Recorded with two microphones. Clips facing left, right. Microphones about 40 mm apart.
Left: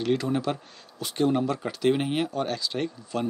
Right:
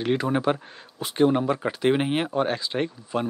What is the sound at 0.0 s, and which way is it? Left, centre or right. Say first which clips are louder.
Speech: right 2 dB; right.